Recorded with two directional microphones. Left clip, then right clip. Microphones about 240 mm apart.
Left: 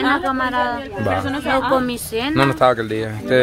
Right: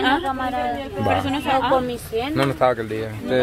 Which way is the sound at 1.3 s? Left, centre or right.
Centre.